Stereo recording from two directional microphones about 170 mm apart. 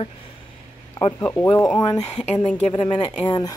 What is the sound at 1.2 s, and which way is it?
Speech, 10° left (ahead or behind).